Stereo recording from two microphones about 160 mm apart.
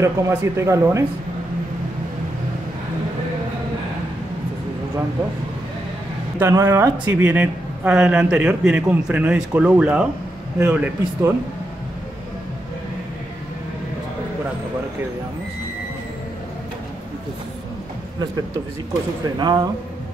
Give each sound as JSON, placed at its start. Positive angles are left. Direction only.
{"t": 0.0, "sound": "a man's voice", "side_deg": -15}
{"t": 6.4, "sound": "a man's voice", "side_deg": -15}
{"t": 19.2, "sound": "speech", "side_deg": -25}